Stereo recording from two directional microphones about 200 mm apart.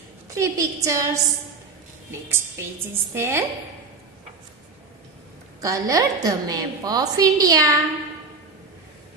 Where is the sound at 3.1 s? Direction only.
10° right (ahead or behind).